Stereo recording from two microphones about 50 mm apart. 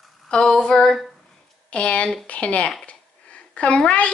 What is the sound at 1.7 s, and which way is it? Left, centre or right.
A woman's voice, left.